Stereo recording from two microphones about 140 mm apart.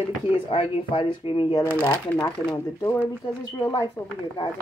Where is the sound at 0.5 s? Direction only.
40° left (ahead or behind); by 3.9 s 25° left (ahead or behind).